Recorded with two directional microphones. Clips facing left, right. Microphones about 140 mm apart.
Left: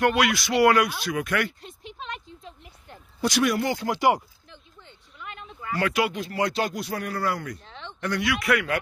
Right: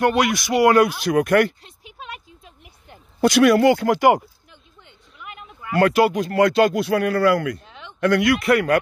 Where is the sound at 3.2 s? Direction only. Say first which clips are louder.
Right 9 dB; 70° right (ahead or behind).